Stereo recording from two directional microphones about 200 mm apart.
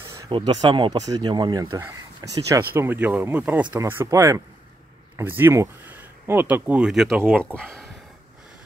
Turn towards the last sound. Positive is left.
turn(degrees=-10)  # may be behind; listen again after turning